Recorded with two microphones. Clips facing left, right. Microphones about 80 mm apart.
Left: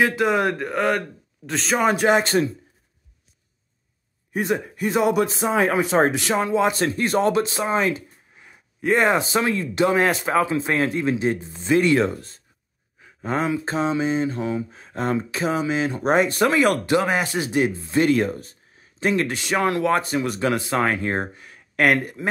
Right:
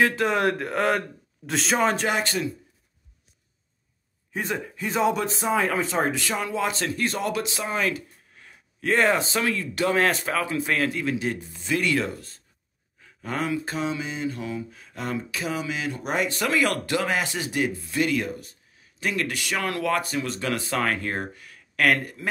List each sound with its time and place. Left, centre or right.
0.0 s a man's voice: centre
2.0 s mantra: left
4.3 s speech: centre
5.4 s mantra: left
6.8 s speech: left
9.3 s mantra: left